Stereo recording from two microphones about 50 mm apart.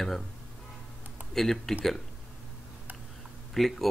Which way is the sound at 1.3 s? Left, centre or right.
Centre.